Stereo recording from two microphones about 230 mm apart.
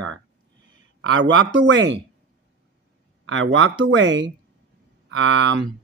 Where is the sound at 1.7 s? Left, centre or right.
Right.